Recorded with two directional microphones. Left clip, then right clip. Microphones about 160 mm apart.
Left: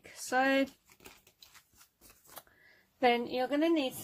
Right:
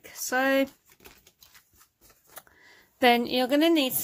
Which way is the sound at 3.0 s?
50° right (ahead or behind).